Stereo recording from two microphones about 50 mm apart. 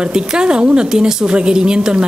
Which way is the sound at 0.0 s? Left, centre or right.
Centre.